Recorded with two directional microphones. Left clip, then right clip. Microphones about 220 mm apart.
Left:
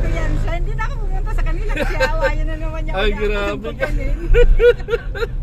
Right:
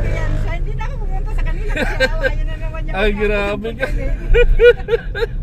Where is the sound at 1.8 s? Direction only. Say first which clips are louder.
Right 1 dB; 15° right (ahead or behind).